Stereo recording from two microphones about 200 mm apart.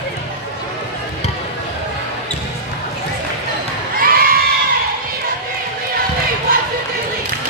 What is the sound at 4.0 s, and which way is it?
Crowd, 45° right (ahead or behind).